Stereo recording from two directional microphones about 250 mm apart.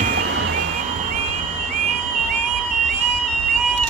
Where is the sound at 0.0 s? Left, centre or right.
Right.